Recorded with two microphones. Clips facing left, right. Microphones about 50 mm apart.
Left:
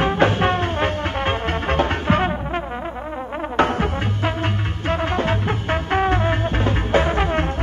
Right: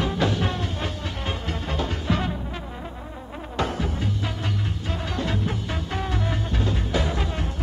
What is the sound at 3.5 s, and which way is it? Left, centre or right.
Music, left.